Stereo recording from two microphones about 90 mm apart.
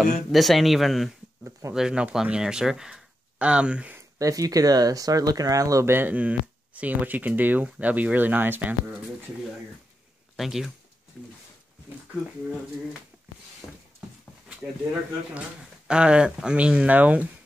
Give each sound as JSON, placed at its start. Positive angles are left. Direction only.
{"t": 0.0, "sound": "speech", "side_deg": 0}
{"t": 4.2, "sound": "speech", "side_deg": -40}
{"t": 10.3, "sound": "speech", "side_deg": -5}
{"t": 13.6, "sound": "a sound", "side_deg": 35}
{"t": 15.9, "sound": "speech", "side_deg": -10}